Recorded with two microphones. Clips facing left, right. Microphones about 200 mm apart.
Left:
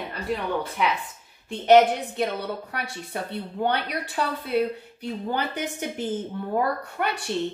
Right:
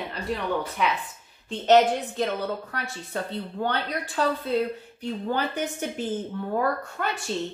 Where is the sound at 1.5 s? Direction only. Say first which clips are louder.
Left 2 dB; 10° left (ahead or behind).